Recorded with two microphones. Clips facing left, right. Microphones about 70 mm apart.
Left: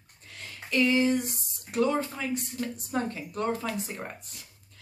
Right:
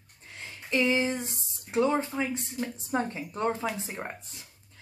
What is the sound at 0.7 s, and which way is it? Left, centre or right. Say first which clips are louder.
Speech: left 2 dB; right.